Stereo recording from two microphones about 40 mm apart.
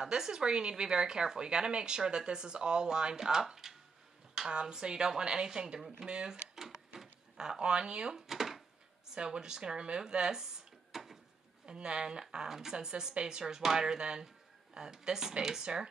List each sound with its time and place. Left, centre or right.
0.0 s speech: centre
6.0 s speech: right
8.3 s a sound: centre
9.1 s speech: right; by 11.1 s centre
11.6 s speech: right